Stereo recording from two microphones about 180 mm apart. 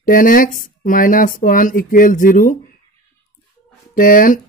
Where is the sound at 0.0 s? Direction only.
50° left (ahead or behind).